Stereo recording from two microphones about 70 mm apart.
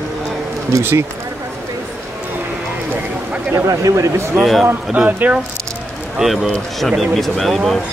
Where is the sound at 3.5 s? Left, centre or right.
Right.